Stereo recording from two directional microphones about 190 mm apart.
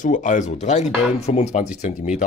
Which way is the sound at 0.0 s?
40° left (ahead or behind).